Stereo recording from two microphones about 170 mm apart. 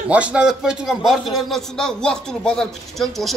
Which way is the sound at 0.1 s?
5° right (ahead or behind).